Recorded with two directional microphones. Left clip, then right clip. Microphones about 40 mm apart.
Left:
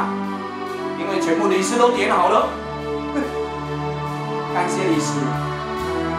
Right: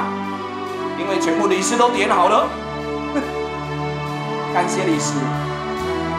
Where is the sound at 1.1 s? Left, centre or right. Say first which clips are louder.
Even; right.